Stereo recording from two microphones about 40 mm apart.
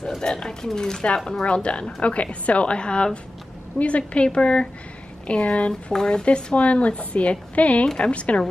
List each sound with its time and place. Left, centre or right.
0.2 s speech: centre
1.4 s a woman's voice: left
5.7 s speech: centre
6.2 s speech: left